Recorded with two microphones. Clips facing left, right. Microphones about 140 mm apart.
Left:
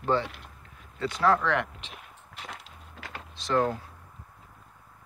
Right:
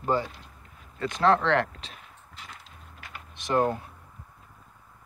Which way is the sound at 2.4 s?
70° left (ahead or behind).